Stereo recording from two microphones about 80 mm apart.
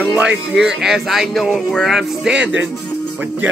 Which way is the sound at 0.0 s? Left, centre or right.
Centre.